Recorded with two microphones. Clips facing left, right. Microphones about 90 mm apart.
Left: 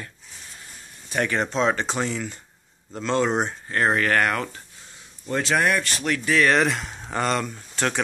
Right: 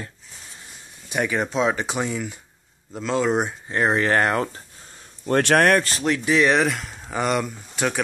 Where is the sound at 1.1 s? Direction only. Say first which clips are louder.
Right 1 dB; 10° right (ahead or behind).